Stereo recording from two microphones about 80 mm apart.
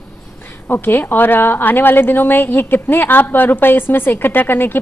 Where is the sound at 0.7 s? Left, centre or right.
Left.